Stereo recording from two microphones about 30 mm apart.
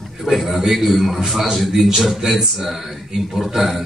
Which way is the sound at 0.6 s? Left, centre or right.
Centre.